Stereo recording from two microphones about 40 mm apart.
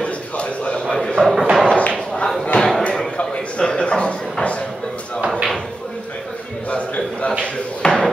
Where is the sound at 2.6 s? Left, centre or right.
Centre.